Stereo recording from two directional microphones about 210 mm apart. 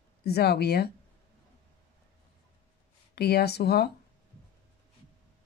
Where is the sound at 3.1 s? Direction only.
50° left (ahead or behind).